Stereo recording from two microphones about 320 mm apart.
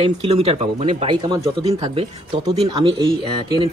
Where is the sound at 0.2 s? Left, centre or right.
Centre.